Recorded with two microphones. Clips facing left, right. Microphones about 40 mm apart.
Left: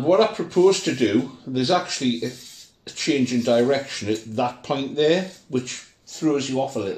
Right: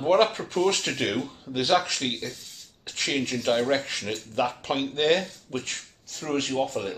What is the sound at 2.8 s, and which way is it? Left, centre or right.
Speech, right.